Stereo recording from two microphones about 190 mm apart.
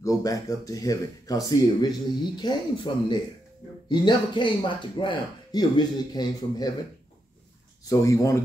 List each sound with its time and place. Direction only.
0.0 s speech: 20° left (ahead or behind)
7.8 s speech: 15° left (ahead or behind)